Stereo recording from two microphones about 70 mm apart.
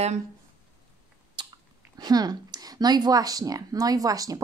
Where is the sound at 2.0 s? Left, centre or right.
Right.